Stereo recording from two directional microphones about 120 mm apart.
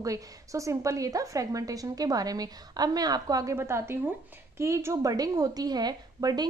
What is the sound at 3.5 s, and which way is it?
A woman's voice, 20° right (ahead or behind).